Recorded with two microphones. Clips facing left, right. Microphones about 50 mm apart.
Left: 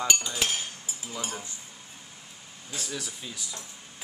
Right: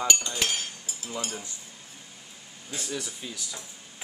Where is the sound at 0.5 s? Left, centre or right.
Centre.